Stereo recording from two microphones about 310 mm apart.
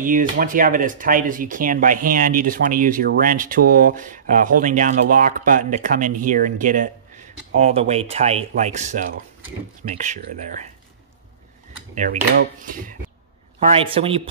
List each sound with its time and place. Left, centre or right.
0.0 s speech: right
11.9 s a man's voice: right